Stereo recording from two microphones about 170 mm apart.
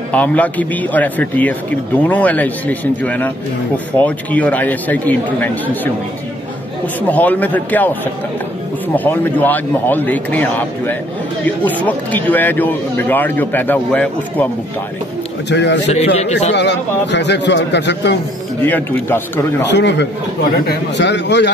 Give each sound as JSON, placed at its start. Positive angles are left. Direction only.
{"t": 0.1, "sound": "speech", "side_deg": 10}
{"t": 7.0, "sound": "speech", "side_deg": 10}
{"t": 15.5, "sound": "a man's voice", "side_deg": 90}
{"t": 16.2, "sound": "a man's voice", "side_deg": 40}
{"t": 16.5, "sound": "a man's voice", "side_deg": 90}
{"t": 18.7, "sound": "speech", "side_deg": 10}
{"t": 19.7, "sound": "a man's voice", "side_deg": 90}